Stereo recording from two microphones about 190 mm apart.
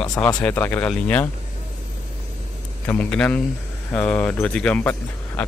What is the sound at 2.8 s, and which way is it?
Speech, 5° left (ahead or behind).